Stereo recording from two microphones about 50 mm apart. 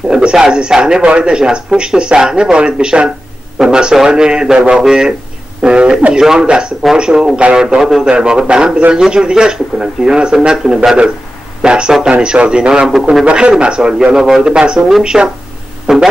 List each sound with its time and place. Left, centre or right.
0.1 s speech: centre